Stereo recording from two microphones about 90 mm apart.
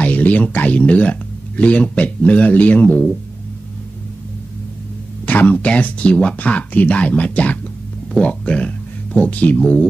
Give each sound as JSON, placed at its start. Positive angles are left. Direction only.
{"t": 0.0, "sound": "speech", "side_deg": 15}
{"t": 5.2, "sound": "speech", "side_deg": 20}